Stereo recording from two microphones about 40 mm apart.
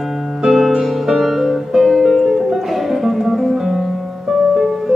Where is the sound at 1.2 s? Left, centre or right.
Centre.